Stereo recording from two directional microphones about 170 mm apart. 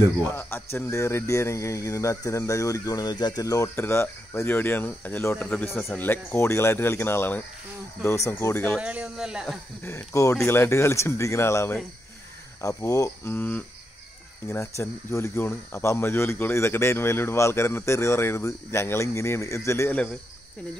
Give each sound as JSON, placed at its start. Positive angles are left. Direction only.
{"t": 0.4, "sound": "speech", "side_deg": 10}
{"t": 8.7, "sound": "speech", "side_deg": -5}
{"t": 9.8, "sound": "speech", "side_deg": 15}